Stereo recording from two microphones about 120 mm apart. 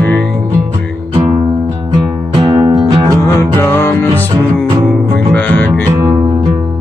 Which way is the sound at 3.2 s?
20° left (ahead or behind).